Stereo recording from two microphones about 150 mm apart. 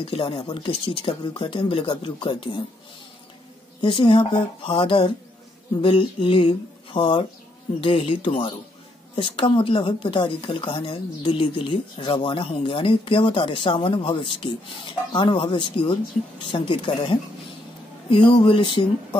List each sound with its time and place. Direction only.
0.0 s speech: 35° left (ahead or behind)
3.8 s speech: 35° left (ahead or behind)